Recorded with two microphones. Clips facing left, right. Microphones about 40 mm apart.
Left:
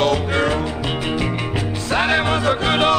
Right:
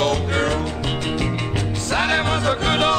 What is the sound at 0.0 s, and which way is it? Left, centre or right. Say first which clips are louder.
Music: left 2 dB; centre.